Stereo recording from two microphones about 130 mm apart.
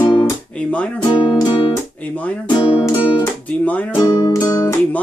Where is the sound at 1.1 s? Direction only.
35° left (ahead or behind).